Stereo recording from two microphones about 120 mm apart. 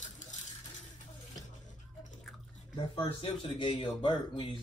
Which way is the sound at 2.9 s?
45° left (ahead or behind).